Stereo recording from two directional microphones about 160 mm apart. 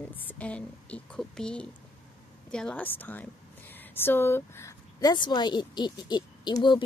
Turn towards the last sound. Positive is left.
turn(degrees=30)  # may be behind; listen again after turning